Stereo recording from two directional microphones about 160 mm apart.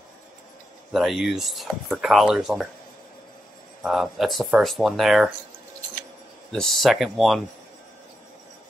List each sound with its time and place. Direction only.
0.9 s speech: centre (ahead or behind)
3.8 s speech: centre (ahead or behind)
6.5 s speech: 5° left (ahead or behind)